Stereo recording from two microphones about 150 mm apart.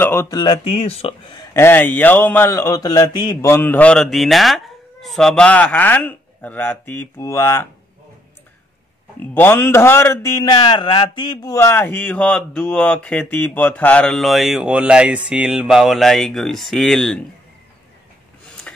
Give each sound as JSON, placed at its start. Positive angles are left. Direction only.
{"t": 0.0, "sound": "speech", "side_deg": 15}
{"t": 0.4, "sound": "speech", "side_deg": 35}
{"t": 1.5, "sound": "speech", "side_deg": 15}
{"t": 9.3, "sound": "speech", "side_deg": 15}